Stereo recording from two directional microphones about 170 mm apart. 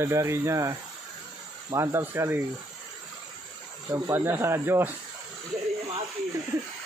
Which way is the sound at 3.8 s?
20° right (ahead or behind).